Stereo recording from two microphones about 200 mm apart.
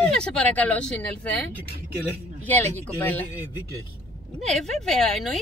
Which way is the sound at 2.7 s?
10° left (ahead or behind).